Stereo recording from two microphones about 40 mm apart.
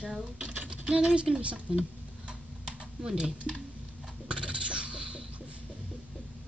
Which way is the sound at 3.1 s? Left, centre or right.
Centre.